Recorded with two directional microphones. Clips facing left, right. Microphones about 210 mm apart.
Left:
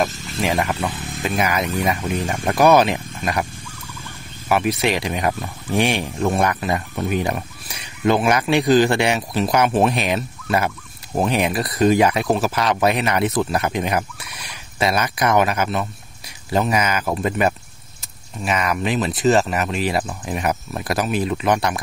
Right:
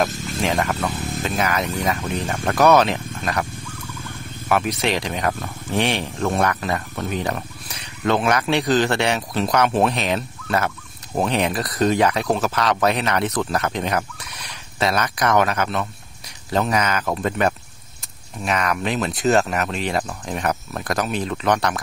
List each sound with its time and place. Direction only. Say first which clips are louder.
0.1 s a sound: right 5 dB; 50° right (ahead or behind)
0.4 s speech: left 1 dB; 10° left (ahead or behind)
4.5 s speech: left 2 dB; 10° left (ahead or behind)